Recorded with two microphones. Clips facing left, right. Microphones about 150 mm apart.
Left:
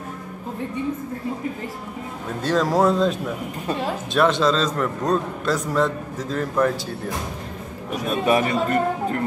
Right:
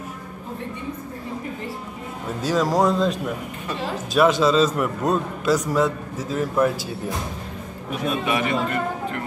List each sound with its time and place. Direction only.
2.4 s a man's voice: 5° right (ahead or behind)
8.3 s a man's voice: 40° left (ahead or behind)